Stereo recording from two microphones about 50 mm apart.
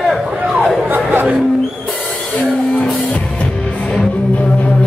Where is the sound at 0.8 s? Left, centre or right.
Right.